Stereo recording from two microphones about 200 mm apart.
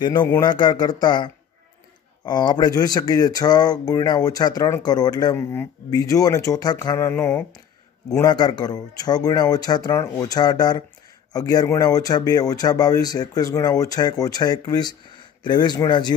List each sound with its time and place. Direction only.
0.2 s a man's voice: 10° left (ahead or behind)
0.5 s speech: 20° left (ahead or behind)